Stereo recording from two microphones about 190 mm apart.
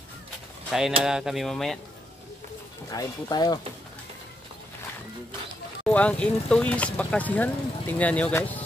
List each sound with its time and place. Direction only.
0.7 s speech: centre (ahead or behind)
1.0 s a sound: centre (ahead or behind)
2.9 s speech: 20° left (ahead or behind)
5.9 s speech: 5° left (ahead or behind)